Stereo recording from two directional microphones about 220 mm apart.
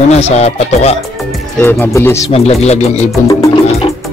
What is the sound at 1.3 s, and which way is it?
Speech, 5° left (ahead or behind).